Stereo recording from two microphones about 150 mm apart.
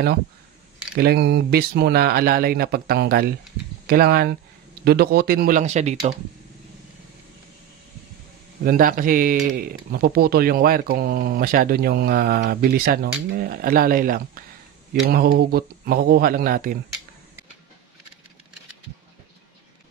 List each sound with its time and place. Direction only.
0.9 s speech: 90° right; by 5.9 s 50° right (ahead or behind)
8.6 s speech: 65° right (ahead or behind)
14.9 s speech: 85° right